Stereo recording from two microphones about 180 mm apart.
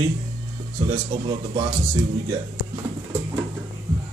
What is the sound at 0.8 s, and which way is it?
Speech, 30° right (ahead or behind).